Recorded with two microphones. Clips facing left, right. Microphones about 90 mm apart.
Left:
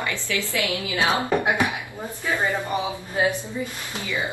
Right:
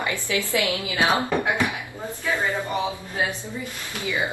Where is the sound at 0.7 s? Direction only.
20° left (ahead or behind).